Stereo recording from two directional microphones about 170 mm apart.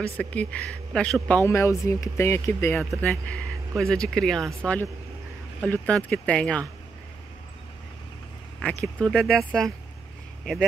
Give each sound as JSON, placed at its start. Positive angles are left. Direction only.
{"t": 0.2, "sound": "speech", "side_deg": 10}
{"t": 1.3, "sound": "speech", "side_deg": 15}
{"t": 5.6, "sound": "speech", "side_deg": 5}
{"t": 8.5, "sound": "speech", "side_deg": 5}